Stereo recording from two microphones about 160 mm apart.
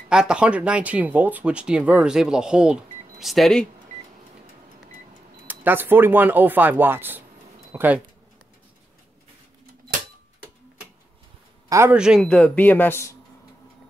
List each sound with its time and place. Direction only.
0.1 s speech: 5° right (ahead or behind)
5.5 s speech: 10° right (ahead or behind)
11.7 s speech: 15° right (ahead or behind)
12.0 s speech: 5° right (ahead or behind)
12.3 s speech: 10° left (ahead or behind)